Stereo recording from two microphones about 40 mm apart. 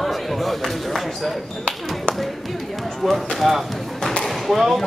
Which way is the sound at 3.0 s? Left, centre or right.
Centre.